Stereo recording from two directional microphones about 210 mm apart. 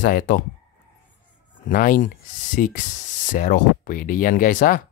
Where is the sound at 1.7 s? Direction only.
40° left (ahead or behind).